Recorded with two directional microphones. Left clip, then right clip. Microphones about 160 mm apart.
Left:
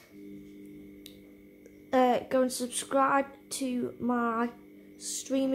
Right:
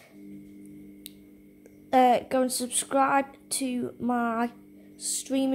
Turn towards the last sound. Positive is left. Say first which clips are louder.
# right 2 dB
turn(degrees=-15)  # may be behind; listen again after turning